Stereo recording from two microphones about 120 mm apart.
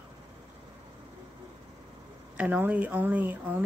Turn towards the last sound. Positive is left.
turn(degrees=-15)  # may be behind; listen again after turning